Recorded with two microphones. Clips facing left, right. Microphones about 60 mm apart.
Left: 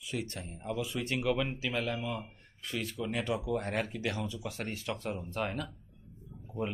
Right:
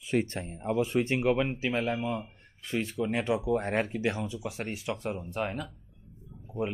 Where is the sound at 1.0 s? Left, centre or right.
Right.